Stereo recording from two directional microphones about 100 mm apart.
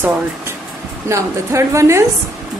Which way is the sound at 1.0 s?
30° right (ahead or behind).